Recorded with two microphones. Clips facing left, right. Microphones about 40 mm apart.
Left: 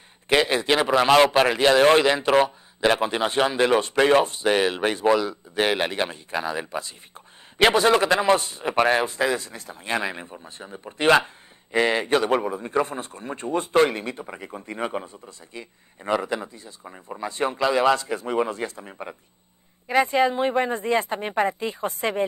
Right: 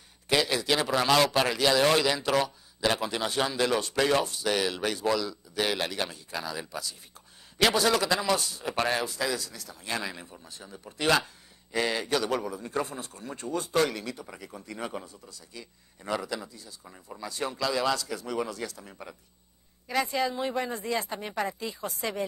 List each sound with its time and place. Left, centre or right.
0.3 s a man's voice: left